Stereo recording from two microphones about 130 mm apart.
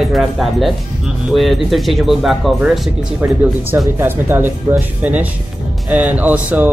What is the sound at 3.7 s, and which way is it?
Speech, 15° right (ahead or behind).